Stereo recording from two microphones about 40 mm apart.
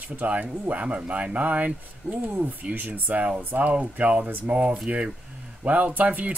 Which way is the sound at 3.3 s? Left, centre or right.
Right.